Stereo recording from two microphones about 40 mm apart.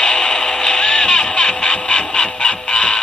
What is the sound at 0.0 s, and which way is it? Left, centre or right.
Music, centre.